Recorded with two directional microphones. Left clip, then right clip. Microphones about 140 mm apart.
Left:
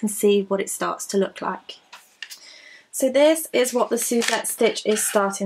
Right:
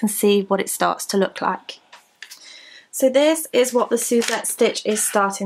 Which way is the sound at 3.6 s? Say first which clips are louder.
Right 3 dB; 35° right (ahead or behind).